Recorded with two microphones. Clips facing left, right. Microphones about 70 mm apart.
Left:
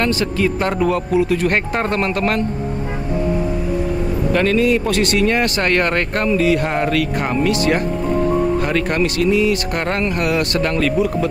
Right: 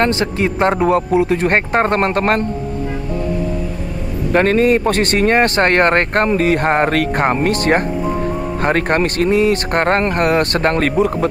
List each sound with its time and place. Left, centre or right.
0.0 s speech: right
4.3 s speech: right